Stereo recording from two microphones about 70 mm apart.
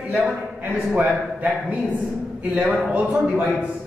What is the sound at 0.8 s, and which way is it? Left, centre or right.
A man's voice, centre.